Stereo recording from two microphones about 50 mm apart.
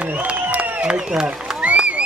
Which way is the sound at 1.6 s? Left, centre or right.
Right.